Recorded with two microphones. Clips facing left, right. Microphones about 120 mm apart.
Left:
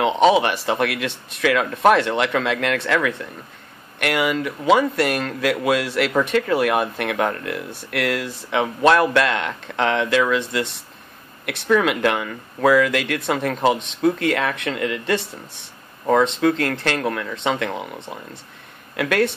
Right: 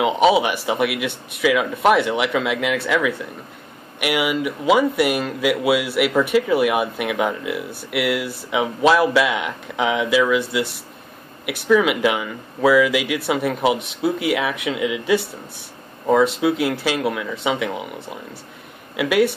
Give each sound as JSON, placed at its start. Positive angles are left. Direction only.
{"t": 0.0, "sound": "a man's voice", "side_deg": -5}